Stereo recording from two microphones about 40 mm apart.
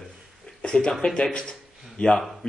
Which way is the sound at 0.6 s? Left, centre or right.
Centre.